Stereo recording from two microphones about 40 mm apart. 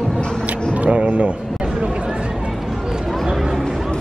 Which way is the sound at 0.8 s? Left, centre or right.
Right.